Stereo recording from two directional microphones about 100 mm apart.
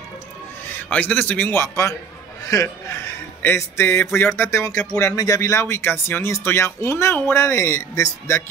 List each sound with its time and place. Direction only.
0.8 s a man's voice: 15° left (ahead or behind)